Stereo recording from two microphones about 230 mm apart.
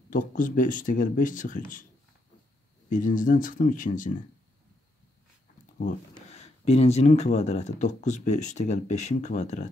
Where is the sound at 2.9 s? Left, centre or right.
Left.